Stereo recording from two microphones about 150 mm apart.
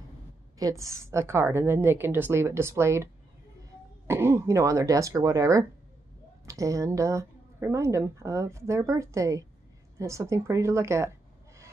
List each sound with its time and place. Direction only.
0.6 s a woman's voice: 20° right (ahead or behind)
4.1 s a woman's voice: 15° right (ahead or behind)